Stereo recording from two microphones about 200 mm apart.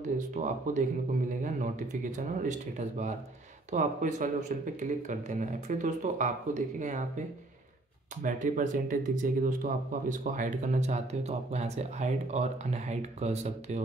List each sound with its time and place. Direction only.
0.0 s speech: 40° right (ahead or behind)
8.2 s speech: 40° right (ahead or behind)